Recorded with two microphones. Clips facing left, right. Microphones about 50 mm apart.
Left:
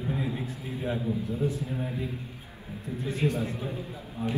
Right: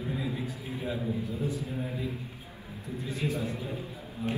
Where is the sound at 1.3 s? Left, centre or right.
Left.